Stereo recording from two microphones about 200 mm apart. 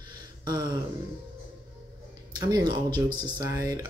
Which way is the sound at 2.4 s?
20° right (ahead or behind).